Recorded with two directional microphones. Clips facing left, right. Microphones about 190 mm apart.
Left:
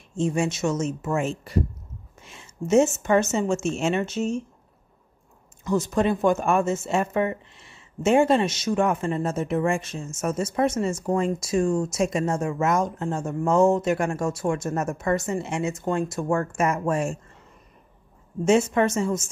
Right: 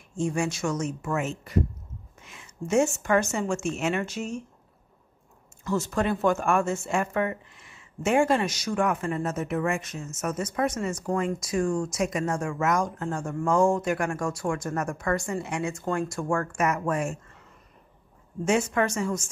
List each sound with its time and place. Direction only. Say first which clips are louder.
0.1 s speech: left 3 dB; 20° left (ahead or behind)
5.6 s speech: left 4 dB; 15° left (ahead or behind)
18.4 s speech: left 5 dB; 25° left (ahead or behind)